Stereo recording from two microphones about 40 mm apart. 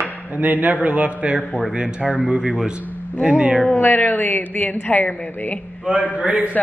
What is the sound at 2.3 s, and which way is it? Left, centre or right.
Speech, centre.